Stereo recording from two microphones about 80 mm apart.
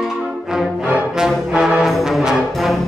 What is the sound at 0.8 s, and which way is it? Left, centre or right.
Music, centre.